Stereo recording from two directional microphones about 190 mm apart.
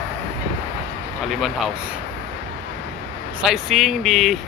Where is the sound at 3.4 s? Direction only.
Centre (ahead or behind).